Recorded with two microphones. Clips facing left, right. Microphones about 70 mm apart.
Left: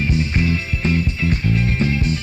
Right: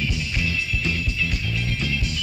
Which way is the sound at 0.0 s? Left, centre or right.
Left.